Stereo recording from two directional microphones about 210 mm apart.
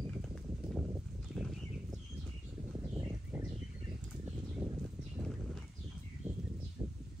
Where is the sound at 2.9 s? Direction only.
10° right (ahead or behind).